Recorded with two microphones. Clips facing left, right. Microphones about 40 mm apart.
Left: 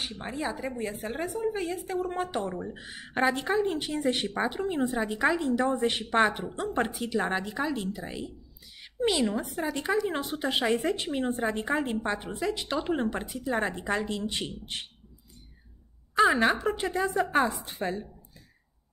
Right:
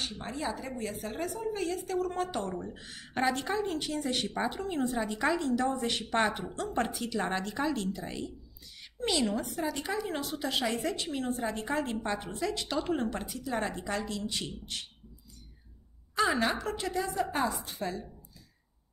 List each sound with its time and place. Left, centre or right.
0.0 s a woman's voice: centre
5.6 s a woman's voice: left
16.3 s a woman's voice: left